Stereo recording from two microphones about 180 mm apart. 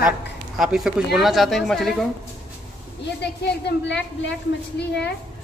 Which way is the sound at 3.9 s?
75° left (ahead or behind).